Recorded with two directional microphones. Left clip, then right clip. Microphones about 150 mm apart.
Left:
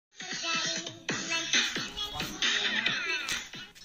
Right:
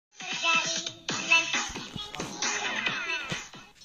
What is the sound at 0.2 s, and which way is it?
Music, 30° left (ahead or behind).